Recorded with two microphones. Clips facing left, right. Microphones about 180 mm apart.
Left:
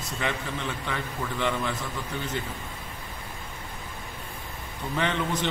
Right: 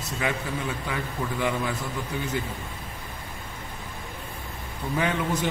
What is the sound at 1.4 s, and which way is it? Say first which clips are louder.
A man's voice: even; 10° right (ahead or behind).